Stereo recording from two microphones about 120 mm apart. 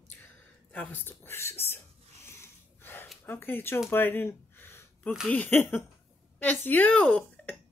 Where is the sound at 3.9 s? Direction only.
20° left (ahead or behind).